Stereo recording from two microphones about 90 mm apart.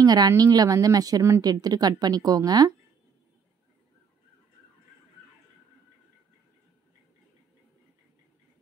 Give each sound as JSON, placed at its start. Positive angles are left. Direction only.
{"t": 0.0, "sound": "a woman's voice", "side_deg": -50}